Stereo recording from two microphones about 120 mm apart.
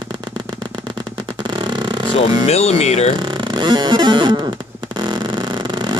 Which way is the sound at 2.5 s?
65° left (ahead or behind).